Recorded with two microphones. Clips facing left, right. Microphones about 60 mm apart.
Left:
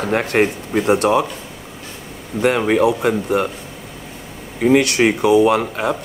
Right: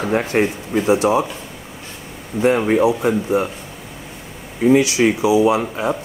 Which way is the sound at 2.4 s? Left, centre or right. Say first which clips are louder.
Even; left.